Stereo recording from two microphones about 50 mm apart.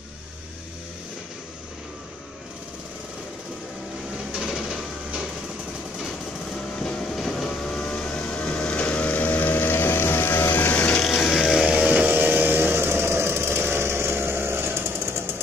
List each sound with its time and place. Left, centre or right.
4.4 s printer: centre
6.8 s train: centre
7.2 s vehicle: centre; by 10.7 s left
10.7 s a sound: left
11.0 s a sound: centre
11.6 s music: right
12.1 s chainsaw: right